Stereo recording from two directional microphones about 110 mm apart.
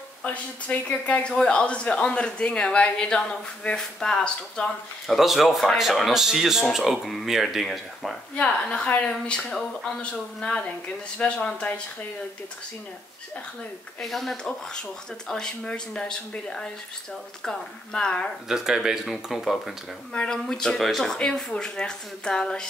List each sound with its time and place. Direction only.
0.2 s a man's voice: 15° left (ahead or behind)
13.9 s speech: 5° left (ahead or behind)
18.5 s a man's voice: 5° right (ahead or behind)